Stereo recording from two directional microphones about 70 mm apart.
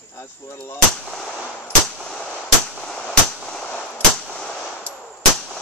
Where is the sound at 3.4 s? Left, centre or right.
Centre.